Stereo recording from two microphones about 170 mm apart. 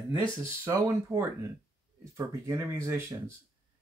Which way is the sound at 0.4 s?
20° right (ahead or behind).